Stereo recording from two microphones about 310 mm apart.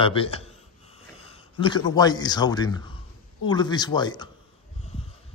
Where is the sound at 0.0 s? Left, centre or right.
Centre.